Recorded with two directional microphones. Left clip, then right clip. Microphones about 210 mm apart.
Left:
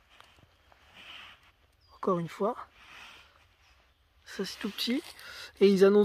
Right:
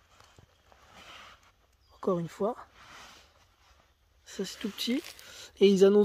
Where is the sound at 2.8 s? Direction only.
50° right (ahead or behind).